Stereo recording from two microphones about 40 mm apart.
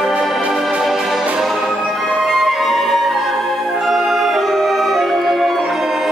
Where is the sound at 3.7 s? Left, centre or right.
Centre.